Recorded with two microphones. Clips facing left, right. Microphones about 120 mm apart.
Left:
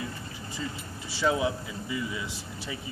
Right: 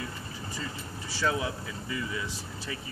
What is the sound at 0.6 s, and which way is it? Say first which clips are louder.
Speech: left 4 dB; 15° left (ahead or behind).